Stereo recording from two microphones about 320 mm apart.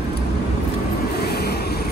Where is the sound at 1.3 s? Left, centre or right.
Left.